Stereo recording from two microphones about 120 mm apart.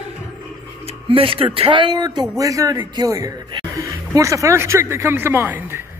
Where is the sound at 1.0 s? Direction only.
50° right (ahead or behind); by 5.8 s 20° right (ahead or behind).